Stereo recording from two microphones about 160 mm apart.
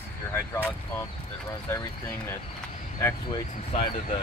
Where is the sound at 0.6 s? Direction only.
15° left (ahead or behind).